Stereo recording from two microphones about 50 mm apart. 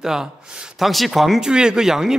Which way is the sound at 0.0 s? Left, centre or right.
Centre.